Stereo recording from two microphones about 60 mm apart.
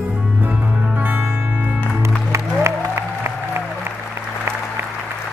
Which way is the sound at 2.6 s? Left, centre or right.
Right.